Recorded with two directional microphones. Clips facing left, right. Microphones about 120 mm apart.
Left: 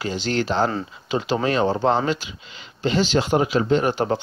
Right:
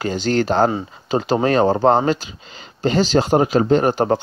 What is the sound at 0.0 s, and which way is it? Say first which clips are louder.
Speech: right 5 dB; 45° right (ahead or behind).